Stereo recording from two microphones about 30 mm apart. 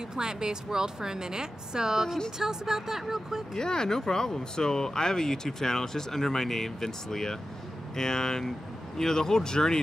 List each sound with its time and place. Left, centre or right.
0.1 s a woman's voice: right
3.5 s speech: left